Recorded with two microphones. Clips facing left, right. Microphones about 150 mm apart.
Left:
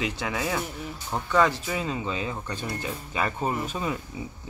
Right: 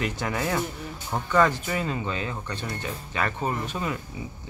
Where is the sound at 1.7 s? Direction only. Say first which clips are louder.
Right 1 dB; 5° left (ahead or behind).